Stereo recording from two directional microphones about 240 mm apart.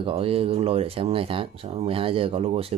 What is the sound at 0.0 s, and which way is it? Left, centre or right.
Speech, right.